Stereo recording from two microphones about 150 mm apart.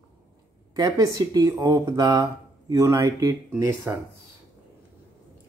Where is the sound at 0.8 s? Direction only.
25° right (ahead or behind).